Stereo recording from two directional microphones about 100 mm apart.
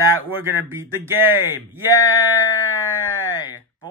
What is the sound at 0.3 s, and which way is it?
Speech, 20° right (ahead or behind).